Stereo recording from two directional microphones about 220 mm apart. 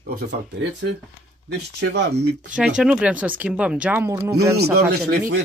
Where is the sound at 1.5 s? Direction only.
50° right (ahead or behind).